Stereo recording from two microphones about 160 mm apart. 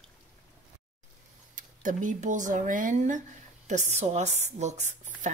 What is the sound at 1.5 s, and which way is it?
Speech, 55° right (ahead or behind).